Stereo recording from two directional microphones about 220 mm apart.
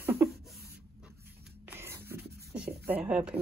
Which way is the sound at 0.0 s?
10° right (ahead or behind).